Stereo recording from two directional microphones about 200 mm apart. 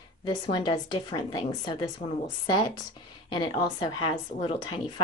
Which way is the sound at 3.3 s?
20° left (ahead or behind).